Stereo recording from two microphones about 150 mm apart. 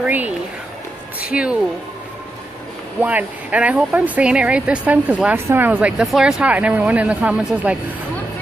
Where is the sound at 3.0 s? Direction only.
10° right (ahead or behind).